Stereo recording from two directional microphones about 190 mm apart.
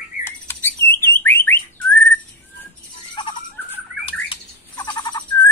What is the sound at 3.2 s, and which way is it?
Owl, 25° left (ahead or behind).